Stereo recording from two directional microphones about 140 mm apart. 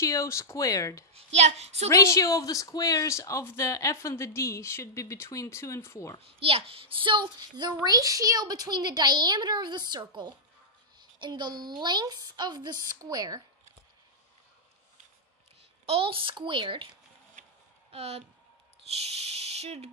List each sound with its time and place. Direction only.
0.0 s speech: 20° left (ahead or behind)
1.1 s speech: 50° right (ahead or behind)
1.9 s speech: 20° left (ahead or behind)
6.7 s a child's voice: 40° right (ahead or behind)
15.8 s a child's voice: 45° right (ahead or behind)
17.9 s speech: 45° right (ahead or behind)